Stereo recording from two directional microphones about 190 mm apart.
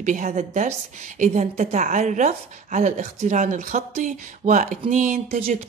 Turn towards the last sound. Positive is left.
turn(degrees=-40)  # may be behind; listen again after turning